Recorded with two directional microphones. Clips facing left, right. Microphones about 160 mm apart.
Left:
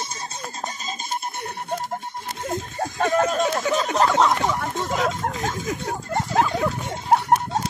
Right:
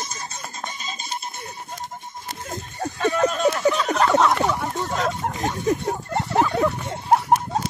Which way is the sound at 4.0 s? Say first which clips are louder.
Right 2 dB; centre (ahead or behind).